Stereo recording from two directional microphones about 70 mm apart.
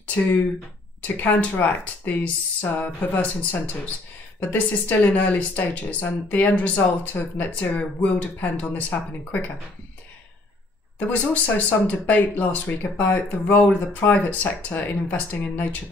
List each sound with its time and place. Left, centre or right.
1.0 s speech: left
11.0 s speech: left